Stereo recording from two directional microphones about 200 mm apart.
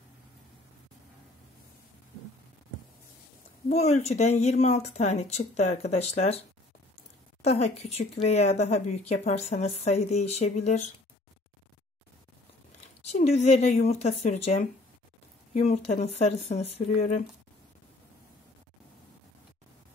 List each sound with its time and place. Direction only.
3.6 s speech: 35° left (ahead or behind)
7.4 s speech: 35° left (ahead or behind)
13.0 s speech: 30° left (ahead or behind)